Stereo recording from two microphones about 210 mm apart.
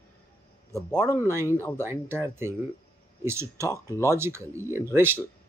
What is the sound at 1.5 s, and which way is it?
Speech, 10° left (ahead or behind).